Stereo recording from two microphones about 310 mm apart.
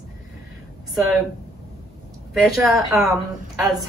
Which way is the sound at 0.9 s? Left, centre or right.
Centre.